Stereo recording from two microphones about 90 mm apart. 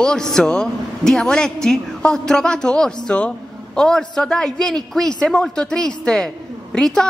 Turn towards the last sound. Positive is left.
turn(degrees=5)  # may be behind; listen again after turning